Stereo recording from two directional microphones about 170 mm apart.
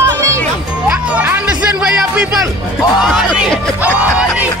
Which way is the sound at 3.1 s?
Centre (ahead or behind).